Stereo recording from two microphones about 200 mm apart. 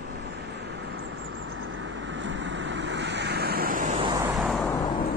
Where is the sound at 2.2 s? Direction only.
65° right (ahead or behind); by 4.0 s 40° right (ahead or behind).